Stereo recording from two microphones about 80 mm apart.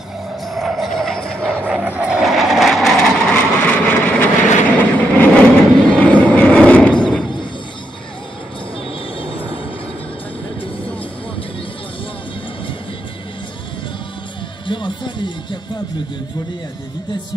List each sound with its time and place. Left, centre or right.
0.6 s music: centre
1.7 s vehicle: centre
2.2 s vehicle: centre
14.7 s music: left